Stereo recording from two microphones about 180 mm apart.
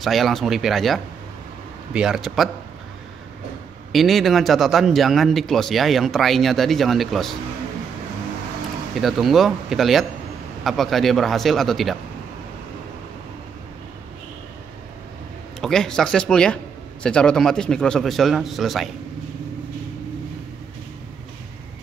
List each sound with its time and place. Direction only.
0.0 s a man's voice: centre (ahead or behind)
3.9 s a man's voice: centre (ahead or behind)
9.0 s a man's voice: centre (ahead or behind)
15.6 s a man's voice: 5° left (ahead or behind)